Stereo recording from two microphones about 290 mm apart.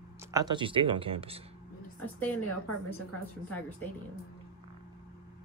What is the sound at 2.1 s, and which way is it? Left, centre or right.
Speech, centre.